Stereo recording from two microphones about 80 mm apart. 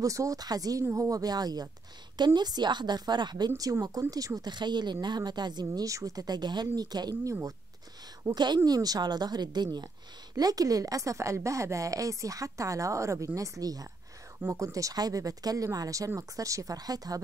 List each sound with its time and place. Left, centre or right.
0.0 s a woman's voice: right
4.4 s a woman's voice: right
5.9 s a woman's voice: right
10.3 s a woman's voice: right